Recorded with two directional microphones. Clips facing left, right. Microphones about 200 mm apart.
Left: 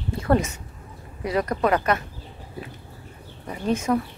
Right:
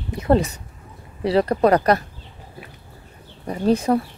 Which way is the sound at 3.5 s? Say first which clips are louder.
Right 5 dB; 35° right (ahead or behind).